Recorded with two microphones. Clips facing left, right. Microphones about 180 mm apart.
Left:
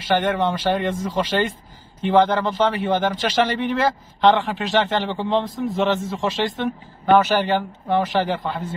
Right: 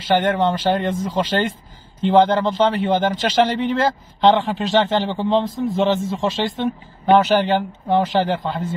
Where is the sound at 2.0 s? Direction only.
25° right (ahead or behind).